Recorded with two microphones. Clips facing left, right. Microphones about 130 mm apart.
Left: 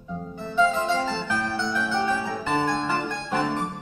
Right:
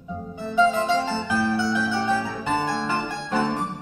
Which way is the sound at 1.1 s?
15° right (ahead or behind).